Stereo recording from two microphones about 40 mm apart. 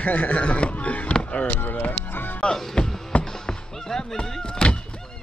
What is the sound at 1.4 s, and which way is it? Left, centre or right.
Chop, left.